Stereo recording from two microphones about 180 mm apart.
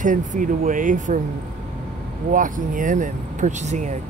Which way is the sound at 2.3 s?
45° right (ahead or behind).